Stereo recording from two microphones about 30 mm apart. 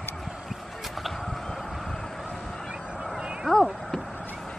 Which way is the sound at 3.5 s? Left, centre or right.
Centre.